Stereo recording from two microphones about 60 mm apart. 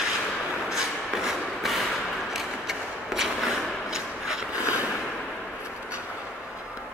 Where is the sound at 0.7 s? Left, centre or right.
Centre.